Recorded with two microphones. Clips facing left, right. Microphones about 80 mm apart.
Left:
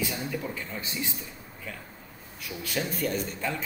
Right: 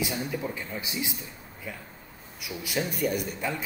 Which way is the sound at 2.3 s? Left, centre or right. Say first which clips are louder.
Right 1 dB; centre.